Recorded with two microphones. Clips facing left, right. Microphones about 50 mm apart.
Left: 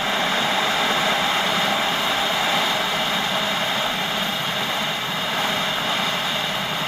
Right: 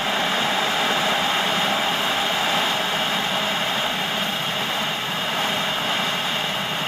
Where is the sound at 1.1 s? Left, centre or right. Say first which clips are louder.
Left 1 dB; centre.